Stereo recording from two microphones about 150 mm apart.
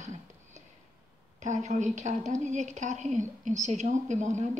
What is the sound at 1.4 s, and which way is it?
A woman's voice, 50° right (ahead or behind).